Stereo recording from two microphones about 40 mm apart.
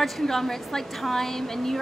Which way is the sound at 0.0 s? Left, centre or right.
Centre.